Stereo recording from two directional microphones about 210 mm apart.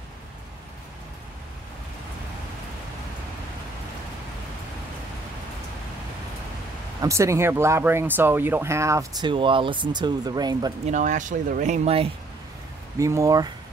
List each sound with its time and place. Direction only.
7.0 s speech: 15° right (ahead or behind)
10.9 s speech: 35° right (ahead or behind)
13.0 s speech: 15° right (ahead or behind)